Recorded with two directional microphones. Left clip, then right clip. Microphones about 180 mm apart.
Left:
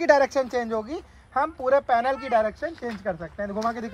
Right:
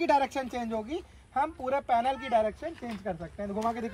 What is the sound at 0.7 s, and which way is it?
A woman's voice, 10° left (ahead or behind).